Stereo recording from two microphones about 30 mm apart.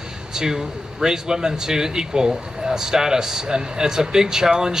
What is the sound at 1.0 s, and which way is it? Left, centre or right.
Speech, right.